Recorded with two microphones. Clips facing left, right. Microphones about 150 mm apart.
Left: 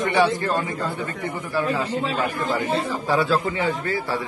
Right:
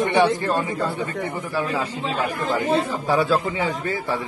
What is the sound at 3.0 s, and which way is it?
Speech, 15° right (ahead or behind).